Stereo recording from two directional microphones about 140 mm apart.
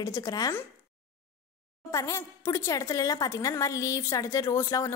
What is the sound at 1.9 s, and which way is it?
A woman's voice, 20° left (ahead or behind).